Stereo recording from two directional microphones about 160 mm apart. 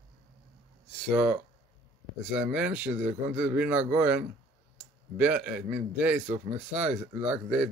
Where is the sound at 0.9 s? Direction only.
5° right (ahead or behind).